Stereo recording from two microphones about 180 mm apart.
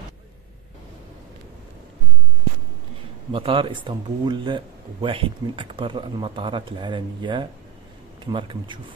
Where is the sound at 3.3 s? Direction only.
30° right (ahead or behind).